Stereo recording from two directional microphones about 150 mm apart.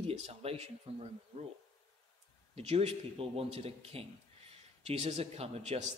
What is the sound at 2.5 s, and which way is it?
Speech, 40° right (ahead or behind).